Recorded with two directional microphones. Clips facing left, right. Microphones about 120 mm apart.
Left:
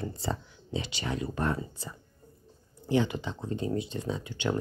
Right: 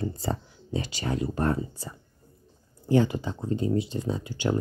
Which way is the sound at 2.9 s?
40° right (ahead or behind).